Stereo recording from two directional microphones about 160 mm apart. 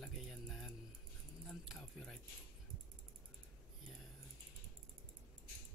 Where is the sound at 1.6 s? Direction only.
Centre (ahead or behind).